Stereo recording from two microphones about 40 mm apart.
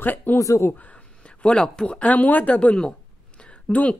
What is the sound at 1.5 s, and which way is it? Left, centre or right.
Speech, centre.